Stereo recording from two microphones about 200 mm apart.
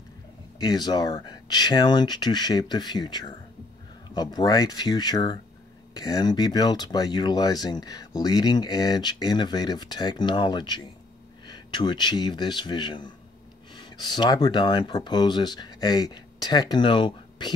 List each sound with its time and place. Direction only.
0.6 s speech: 20° left (ahead or behind)